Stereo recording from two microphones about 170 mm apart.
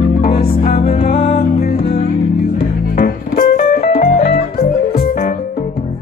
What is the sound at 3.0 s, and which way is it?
Music, 65° left (ahead or behind).